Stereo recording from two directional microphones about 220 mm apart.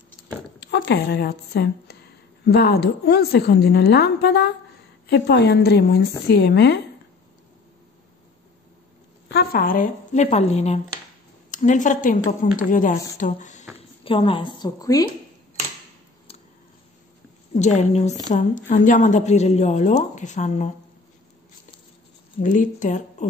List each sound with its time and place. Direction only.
0.6 s a woman's voice: 50° left (ahead or behind)
9.3 s a woman's voice: 45° left (ahead or behind); by 15.0 s 15° left (ahead or behind)
17.6 s a woman's voice: 30° left (ahead or behind)
22.4 s a woman's voice: 35° left (ahead or behind)